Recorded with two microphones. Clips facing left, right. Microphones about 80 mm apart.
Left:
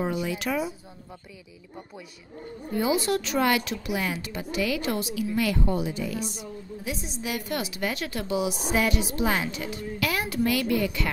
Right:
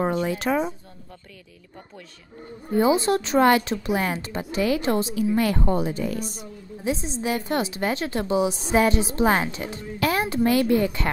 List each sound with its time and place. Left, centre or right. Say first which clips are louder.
0.0 s a woman's voice: right 4 dB; right
2.7 s a woman's voice: right 5 dB; right
6.8 s a woman's voice: right 8 dB; right